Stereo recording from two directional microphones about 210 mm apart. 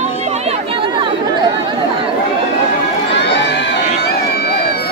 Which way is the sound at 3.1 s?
55° left (ahead or behind).